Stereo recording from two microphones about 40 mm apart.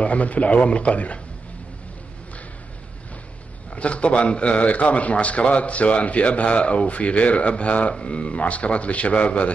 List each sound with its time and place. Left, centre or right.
0.0 s a man's voice: left
3.7 s a man's voice: left